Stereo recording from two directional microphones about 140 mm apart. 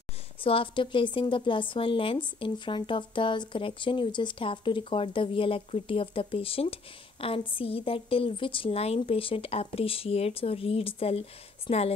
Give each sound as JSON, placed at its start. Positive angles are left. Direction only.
{"t": 0.4, "sound": "speech", "side_deg": 40}